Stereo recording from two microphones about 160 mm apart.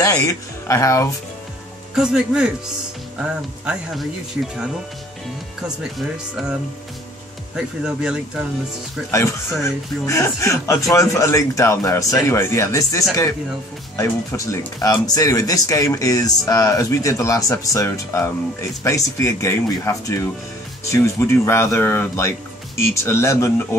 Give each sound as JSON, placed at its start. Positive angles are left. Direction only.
{"t": 0.0, "sound": "speech", "side_deg": 20}
{"t": 2.0, "sound": "speech", "side_deg": -5}
{"t": 7.5, "sound": "speech", "side_deg": -5}
{"t": 9.1, "sound": "speech", "side_deg": 20}